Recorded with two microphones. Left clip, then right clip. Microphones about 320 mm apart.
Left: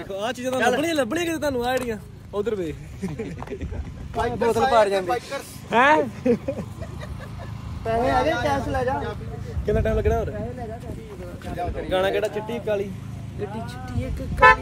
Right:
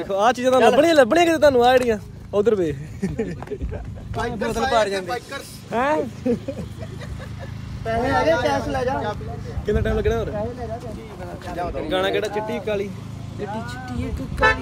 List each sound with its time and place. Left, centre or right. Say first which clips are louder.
0.0 s speech: right 9 dB; centre
4.2 s speech: left 3 dB; centre
5.7 s speech: left 4 dB; left
7.8 s speech: right 1 dB; centre
11.9 s speech: even; centre